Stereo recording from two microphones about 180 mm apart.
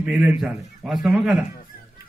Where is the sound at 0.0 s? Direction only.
5° right (ahead or behind).